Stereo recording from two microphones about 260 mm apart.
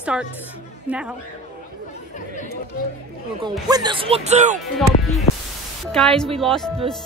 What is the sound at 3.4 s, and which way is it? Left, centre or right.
Speech, centre.